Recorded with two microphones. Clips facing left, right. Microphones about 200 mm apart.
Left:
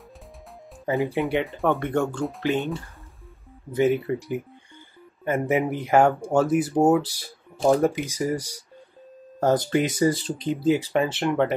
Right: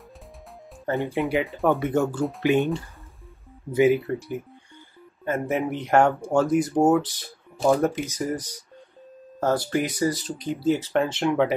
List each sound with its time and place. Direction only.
0.9 s speech: centre (ahead or behind)
4.1 s speech: 10° left (ahead or behind)
10.7 s speech: 10° left (ahead or behind)